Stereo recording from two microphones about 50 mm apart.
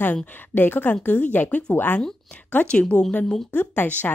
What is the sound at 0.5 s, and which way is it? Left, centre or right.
Speech, left.